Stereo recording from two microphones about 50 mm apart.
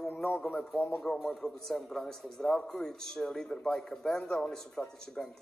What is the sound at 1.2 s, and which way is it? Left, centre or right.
Speech, centre.